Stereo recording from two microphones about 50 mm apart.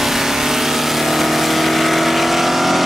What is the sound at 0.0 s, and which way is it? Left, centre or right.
Vehicle, centre.